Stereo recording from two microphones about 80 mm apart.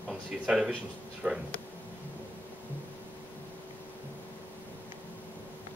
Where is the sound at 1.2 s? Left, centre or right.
Centre.